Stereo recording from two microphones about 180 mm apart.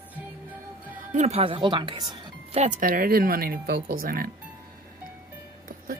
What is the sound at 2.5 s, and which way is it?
Speech, 45° right (ahead or behind).